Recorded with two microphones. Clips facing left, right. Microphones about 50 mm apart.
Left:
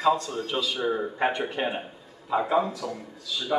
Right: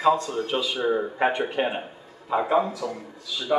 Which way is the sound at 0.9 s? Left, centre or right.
Centre.